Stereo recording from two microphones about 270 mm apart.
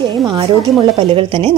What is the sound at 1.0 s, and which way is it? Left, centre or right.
Speech, centre.